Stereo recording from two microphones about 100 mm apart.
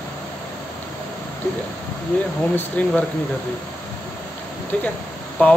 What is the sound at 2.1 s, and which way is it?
Speech, 15° left (ahead or behind).